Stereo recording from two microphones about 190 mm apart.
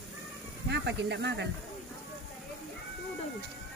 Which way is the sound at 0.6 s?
65° right (ahead or behind).